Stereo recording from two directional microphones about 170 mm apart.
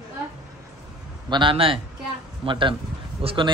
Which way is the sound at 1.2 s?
30° right (ahead or behind).